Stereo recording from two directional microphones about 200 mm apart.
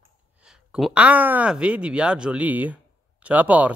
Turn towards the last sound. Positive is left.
turn(degrees=-5)  # may be behind; listen again after turning